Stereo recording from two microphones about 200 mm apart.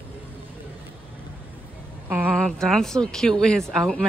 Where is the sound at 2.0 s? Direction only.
10° right (ahead or behind).